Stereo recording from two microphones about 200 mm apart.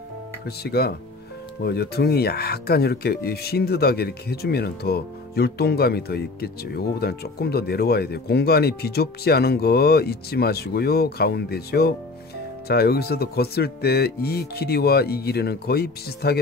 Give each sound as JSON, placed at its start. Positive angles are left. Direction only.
{"t": 0.5, "sound": "speech", "side_deg": 55}